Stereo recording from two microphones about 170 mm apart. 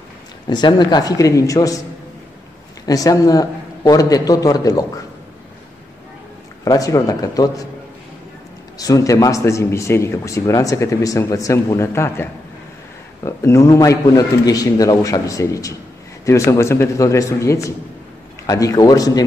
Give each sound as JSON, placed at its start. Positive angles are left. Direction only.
{"t": 0.5, "sound": "a man's voice", "side_deg": 25}
{"t": 2.9, "sound": "a man's voice", "side_deg": 20}
{"t": 6.6, "sound": "a man's voice", "side_deg": 20}
{"t": 8.7, "sound": "a man's voice", "side_deg": 20}